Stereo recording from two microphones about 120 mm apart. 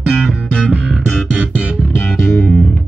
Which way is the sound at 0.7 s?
10° right (ahead or behind).